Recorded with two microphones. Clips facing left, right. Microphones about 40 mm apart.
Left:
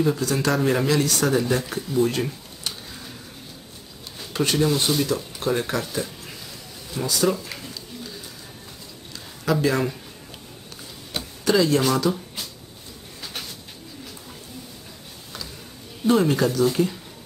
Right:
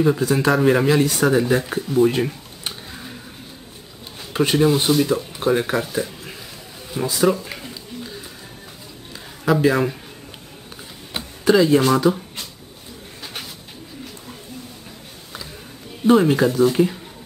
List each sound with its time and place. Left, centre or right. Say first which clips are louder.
0.0 s speech: right 4 dB; centre
4.2 s speech: right 4 dB; centre
7.3 s a sound: right 3 dB; centre
9.4 s speech: right 4 dB; centre
11.1 s speech: right 4 dB; centre
13.2 s bird: right 1 dB; centre
16.1 s speech: right 4 dB; centre